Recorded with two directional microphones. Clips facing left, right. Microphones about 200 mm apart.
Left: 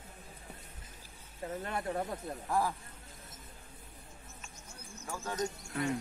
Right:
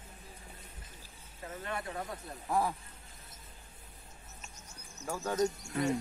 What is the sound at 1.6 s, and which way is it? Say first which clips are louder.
Speech: left 3 dB; 35° left (ahead or behind).